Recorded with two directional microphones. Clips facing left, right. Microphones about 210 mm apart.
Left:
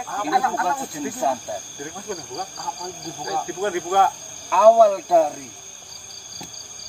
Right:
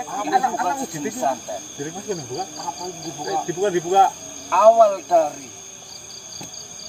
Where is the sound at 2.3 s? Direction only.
10° right (ahead or behind).